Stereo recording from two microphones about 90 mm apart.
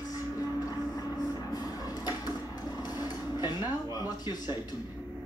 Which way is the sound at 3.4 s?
50° left (ahead or behind).